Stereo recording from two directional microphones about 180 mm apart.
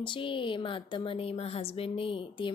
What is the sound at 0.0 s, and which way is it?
Speech, 25° left (ahead or behind).